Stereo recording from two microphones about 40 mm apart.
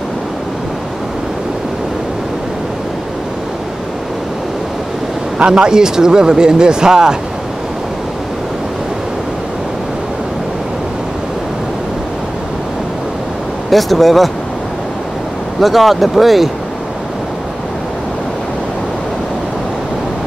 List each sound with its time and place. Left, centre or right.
5.4 s speech: right
13.7 s speech: centre
15.6 s speech: centre